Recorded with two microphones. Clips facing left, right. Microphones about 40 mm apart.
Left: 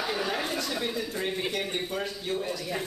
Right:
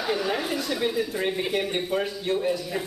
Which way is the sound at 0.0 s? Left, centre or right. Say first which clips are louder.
Right 3 dB; centre.